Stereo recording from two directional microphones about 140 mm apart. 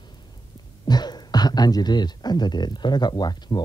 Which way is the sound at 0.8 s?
30° left (ahead or behind).